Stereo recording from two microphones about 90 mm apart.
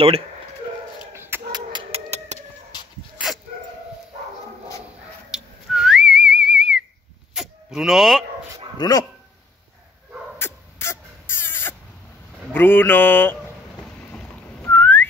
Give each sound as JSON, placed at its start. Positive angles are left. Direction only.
{"t": 1.1, "sound": "a sound", "side_deg": -25}
{"t": 1.5, "sound": "music", "side_deg": -55}
{"t": 5.3, "sound": "whistling", "side_deg": -5}
{"t": 7.3, "sound": "a sound", "side_deg": -5}
{"t": 8.7, "sound": "speech", "side_deg": 45}
{"t": 10.4, "sound": "rodents", "side_deg": 25}
{"t": 12.5, "sound": "speech", "side_deg": 25}
{"t": 13.8, "sound": "boat", "side_deg": 10}
{"t": 14.7, "sound": "whistling", "side_deg": 20}